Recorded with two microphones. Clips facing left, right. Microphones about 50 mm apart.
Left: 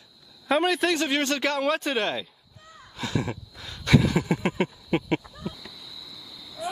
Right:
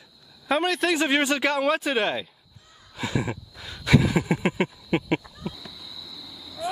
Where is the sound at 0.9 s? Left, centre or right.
Centre.